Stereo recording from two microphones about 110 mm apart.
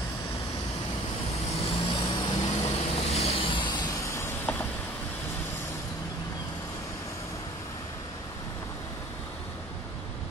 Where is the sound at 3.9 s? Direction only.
25° left (ahead or behind).